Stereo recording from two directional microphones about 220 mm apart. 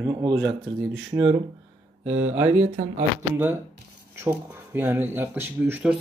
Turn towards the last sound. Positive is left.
turn(degrees=-5)  # may be behind; listen again after turning